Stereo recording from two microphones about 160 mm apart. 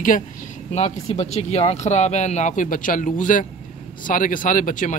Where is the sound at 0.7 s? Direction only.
40° left (ahead or behind).